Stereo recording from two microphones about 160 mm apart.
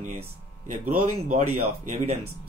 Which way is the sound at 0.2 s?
50° right (ahead or behind).